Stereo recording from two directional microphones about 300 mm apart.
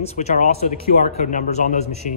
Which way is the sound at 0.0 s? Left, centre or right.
Left.